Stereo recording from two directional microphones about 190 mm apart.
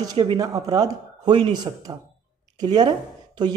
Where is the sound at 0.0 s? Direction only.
20° right (ahead or behind).